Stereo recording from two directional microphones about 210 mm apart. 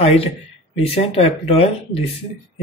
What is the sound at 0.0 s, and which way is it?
Speech, 30° left (ahead or behind).